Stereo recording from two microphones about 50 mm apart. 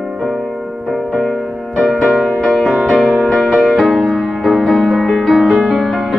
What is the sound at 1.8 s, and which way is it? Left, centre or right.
Music, left.